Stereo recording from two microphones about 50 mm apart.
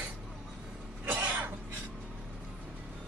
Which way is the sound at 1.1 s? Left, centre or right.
Right.